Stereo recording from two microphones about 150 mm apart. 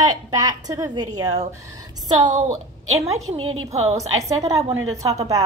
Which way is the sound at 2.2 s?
55° right (ahead or behind).